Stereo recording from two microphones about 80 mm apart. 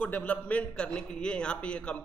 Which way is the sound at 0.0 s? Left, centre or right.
Centre.